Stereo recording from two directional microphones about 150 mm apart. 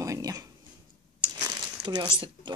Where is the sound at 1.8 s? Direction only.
30° right (ahead or behind).